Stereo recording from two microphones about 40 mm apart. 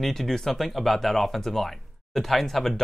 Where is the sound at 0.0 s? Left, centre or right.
Centre.